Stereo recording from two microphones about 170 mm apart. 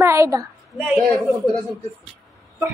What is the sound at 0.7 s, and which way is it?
Speech, 5° right (ahead or behind).